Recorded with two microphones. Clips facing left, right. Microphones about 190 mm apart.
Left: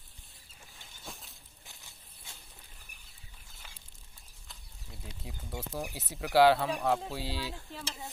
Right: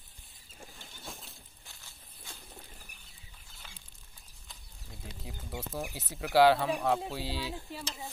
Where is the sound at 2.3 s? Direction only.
25° left (ahead or behind).